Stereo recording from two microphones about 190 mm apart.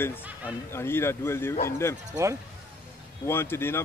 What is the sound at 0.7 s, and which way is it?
Speech, 15° left (ahead or behind).